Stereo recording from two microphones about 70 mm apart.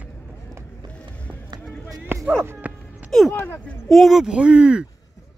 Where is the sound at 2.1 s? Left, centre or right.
Right.